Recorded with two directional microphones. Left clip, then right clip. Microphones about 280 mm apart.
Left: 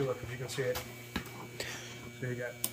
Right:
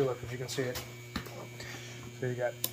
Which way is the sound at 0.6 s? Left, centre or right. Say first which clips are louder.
Left 2 dB; centre.